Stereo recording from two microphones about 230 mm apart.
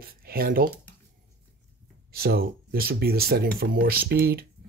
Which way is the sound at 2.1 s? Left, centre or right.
Right.